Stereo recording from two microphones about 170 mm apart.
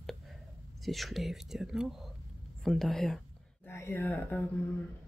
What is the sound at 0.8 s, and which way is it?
Speech, centre (ahead or behind).